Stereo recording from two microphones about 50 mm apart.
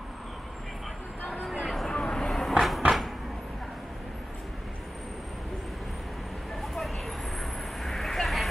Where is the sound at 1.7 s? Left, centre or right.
Centre.